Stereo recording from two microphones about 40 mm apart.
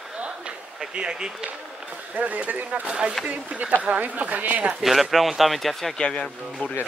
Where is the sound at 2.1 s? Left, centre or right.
Right.